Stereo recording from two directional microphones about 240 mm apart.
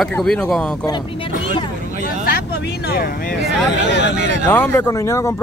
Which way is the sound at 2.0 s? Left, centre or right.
Left.